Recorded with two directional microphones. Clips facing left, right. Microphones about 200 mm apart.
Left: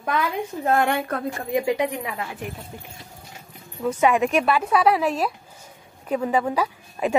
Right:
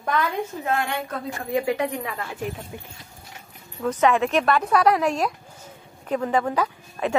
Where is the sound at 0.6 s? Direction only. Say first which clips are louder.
Left 8 dB; 50° left (ahead or behind).